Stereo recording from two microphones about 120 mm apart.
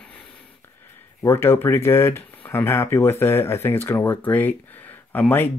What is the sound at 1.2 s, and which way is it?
Speech, 20° left (ahead or behind).